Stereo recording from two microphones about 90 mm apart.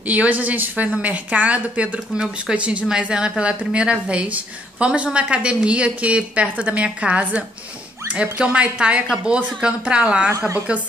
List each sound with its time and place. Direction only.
0.0 s a woman's voice: 15° right (ahead or behind)